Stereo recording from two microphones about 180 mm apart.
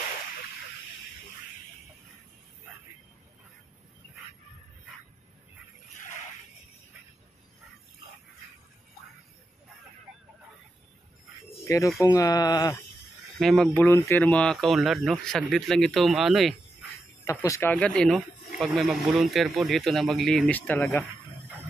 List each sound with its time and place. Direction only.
11.6 s speech: 15° left (ahead or behind)
13.4 s speech: centre (ahead or behind)
13.8 s speech: 15° left (ahead or behind)
17.2 s speech: 15° left (ahead or behind)